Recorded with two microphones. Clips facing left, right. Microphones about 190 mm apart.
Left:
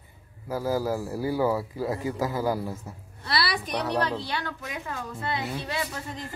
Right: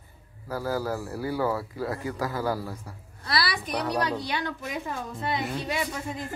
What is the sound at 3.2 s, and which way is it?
A woman's voice, centre (ahead or behind).